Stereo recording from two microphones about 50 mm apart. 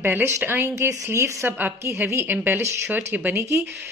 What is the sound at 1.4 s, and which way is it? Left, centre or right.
Speech, right.